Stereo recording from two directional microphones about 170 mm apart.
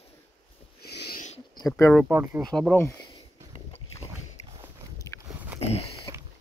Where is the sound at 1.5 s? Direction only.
20° left (ahead or behind).